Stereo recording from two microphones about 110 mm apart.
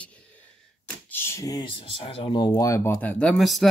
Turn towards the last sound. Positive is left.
turn(degrees=0)  # may be behind; listen again after turning